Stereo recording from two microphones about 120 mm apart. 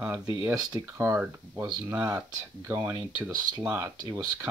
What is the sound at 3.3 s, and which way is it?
Speech, 35° right (ahead or behind).